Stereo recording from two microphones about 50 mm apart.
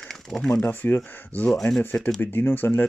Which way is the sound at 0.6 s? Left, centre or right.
Left.